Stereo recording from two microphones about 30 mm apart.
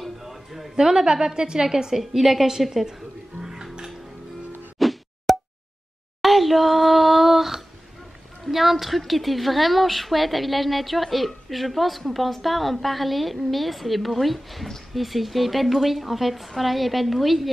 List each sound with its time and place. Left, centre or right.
0.2 s a sound: centre
0.7 s a woman's voice: centre
3.3 s music: right
4.7 s plop: centre
6.2 s female singing: centre
8.5 s a woman's voice: centre